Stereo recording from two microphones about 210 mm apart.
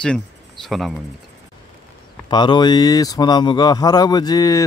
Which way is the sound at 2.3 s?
20° left (ahead or behind).